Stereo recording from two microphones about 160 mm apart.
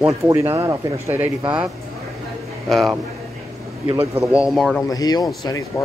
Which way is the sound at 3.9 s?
10° right (ahead or behind).